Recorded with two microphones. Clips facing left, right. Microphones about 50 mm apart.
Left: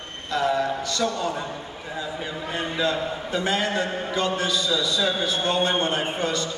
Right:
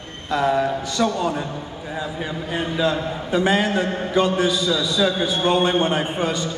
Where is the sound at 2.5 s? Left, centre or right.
Centre.